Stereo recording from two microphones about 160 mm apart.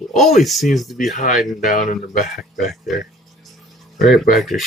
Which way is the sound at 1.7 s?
55° left (ahead or behind).